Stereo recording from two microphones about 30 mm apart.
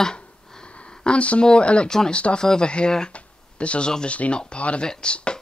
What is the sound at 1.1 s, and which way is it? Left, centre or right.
Speech, left.